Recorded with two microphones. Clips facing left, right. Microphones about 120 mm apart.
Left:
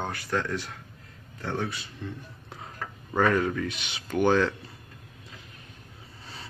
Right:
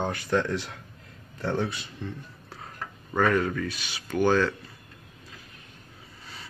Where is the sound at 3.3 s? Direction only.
10° left (ahead or behind).